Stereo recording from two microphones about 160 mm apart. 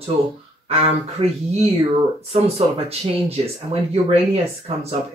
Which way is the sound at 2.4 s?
40° right (ahead or behind).